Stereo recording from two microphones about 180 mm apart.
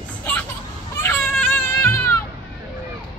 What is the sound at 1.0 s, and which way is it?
Baby cry, 5° left (ahead or behind).